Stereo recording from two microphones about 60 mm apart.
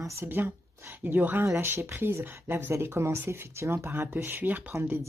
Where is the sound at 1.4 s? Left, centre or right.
Right.